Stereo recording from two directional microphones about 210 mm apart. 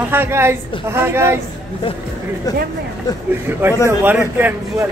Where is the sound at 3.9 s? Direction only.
10° right (ahead or behind).